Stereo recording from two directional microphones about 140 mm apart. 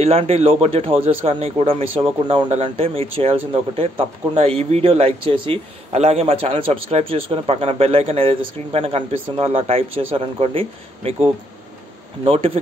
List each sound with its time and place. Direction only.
0.0 s speech: 45° right (ahead or behind)
12.3 s speech: 45° right (ahead or behind)